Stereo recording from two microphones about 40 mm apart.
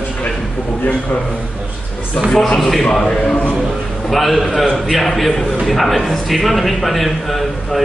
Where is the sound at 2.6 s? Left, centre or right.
Centre.